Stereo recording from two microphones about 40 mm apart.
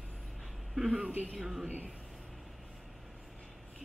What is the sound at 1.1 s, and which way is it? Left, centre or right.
Speech, right.